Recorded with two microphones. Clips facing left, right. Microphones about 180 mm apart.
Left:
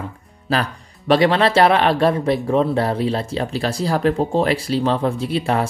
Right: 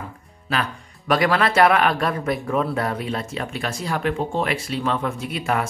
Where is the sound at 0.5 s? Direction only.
30° left (ahead or behind).